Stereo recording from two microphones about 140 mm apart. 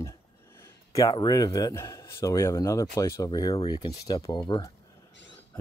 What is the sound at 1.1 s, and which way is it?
A man's voice, 30° left (ahead or behind).